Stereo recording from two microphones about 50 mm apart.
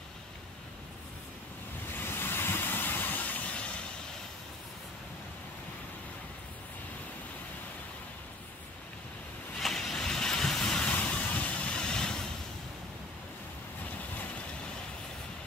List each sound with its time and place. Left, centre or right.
1.9 s vehicle: left
9.6 s vehicle: centre
10.9 s vehicle: left
11.7 s vehicle: centre